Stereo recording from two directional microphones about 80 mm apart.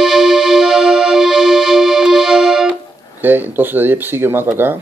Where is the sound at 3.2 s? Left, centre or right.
Right.